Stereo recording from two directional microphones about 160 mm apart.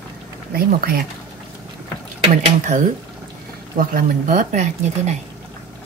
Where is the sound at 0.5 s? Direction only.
70° right (ahead or behind).